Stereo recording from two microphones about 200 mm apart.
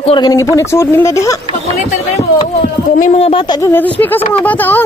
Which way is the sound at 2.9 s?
35° left (ahead or behind).